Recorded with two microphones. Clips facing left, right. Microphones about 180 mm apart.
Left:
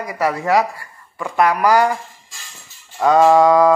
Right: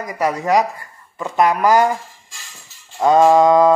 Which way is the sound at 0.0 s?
20° right (ahead or behind).